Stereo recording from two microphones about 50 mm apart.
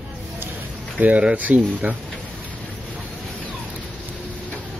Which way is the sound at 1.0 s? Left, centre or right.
Right.